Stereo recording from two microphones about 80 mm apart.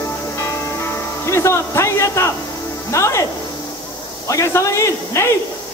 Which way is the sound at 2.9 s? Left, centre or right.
Left.